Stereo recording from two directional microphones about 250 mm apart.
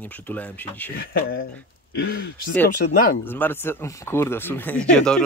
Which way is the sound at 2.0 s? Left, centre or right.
Left.